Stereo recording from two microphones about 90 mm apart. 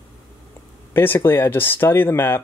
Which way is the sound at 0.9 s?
25° left (ahead or behind).